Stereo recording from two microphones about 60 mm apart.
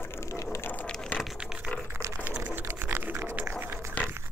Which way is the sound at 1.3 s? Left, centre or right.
Centre.